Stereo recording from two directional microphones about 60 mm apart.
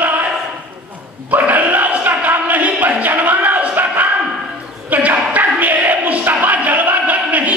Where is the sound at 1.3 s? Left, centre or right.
Right.